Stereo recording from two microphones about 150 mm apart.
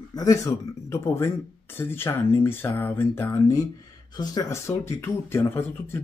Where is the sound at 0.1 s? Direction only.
25° left (ahead or behind).